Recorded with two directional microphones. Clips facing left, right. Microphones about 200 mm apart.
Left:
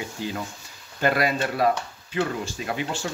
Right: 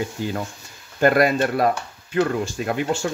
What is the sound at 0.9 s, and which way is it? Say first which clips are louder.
Speech: right 6 dB; 50° right (ahead or behind).